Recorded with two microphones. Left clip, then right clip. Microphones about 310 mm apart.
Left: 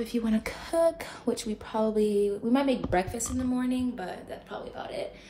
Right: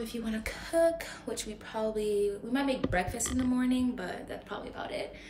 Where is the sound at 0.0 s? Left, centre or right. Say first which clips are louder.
Left 6 dB; centre.